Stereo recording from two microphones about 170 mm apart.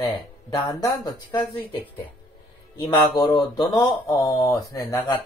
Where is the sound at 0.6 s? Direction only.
25° left (ahead or behind).